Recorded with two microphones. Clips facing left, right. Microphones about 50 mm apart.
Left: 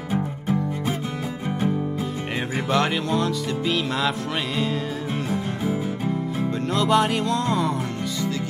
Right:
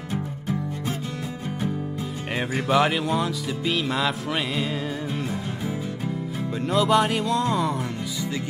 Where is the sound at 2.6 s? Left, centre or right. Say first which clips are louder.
Right 2 dB; centre.